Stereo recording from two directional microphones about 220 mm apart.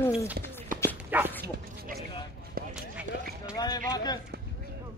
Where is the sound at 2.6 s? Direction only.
40° right (ahead or behind).